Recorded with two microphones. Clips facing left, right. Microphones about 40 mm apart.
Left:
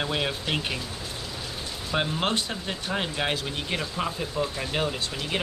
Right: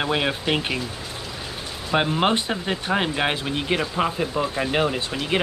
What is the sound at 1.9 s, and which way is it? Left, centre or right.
Speech, right.